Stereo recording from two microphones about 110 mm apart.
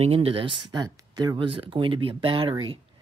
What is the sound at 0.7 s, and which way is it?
Speech, 35° right (ahead or behind).